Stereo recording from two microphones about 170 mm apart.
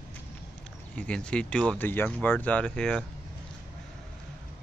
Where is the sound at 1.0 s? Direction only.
5° left (ahead or behind).